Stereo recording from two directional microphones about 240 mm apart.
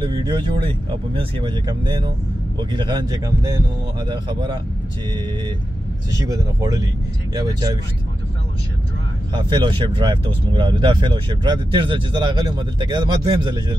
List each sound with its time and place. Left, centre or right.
0.0 s a man's voice: centre
6.1 s a man's voice: centre
9.3 s speech: centre